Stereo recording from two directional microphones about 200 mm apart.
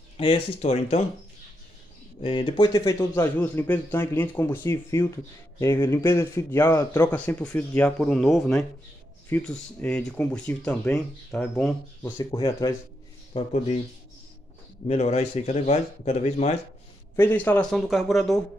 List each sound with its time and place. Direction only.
0.2 s speech: 30° left (ahead or behind)
2.2 s a man's voice: 25° left (ahead or behind); by 12.1 s 5° left (ahead or behind)
12.2 s a man's voice: 20° left (ahead or behind)
13.3 s speech: 30° left (ahead or behind)
14.9 s speech: 30° left (ahead or behind)
17.2 s speech: 10° left (ahead or behind)